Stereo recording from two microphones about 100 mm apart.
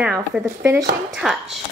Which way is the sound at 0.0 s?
10° right (ahead or behind).